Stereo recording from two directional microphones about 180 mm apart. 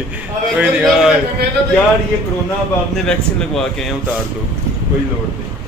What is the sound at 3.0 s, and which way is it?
Speech, 5° left (ahead or behind).